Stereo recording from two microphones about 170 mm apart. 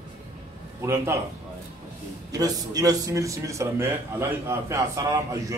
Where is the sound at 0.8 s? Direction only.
15° right (ahead or behind).